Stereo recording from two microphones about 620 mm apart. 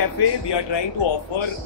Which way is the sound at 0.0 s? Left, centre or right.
Left.